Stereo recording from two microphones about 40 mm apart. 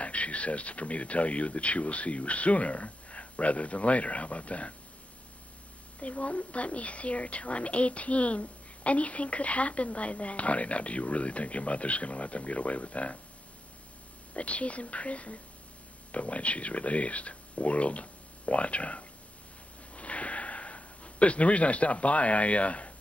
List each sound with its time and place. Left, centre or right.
0.0 s a woman's voice: left
5.9 s a woman's voice: left
14.3 s a woman's voice: left
19.9 s gasp: left